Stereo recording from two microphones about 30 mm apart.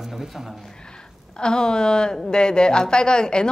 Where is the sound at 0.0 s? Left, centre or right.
Centre.